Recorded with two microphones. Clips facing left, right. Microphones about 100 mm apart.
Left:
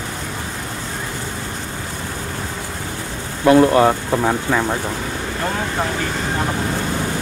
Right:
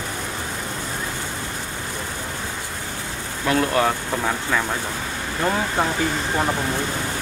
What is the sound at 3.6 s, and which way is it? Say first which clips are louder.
Speech: left 7 dB; 25° left (ahead or behind).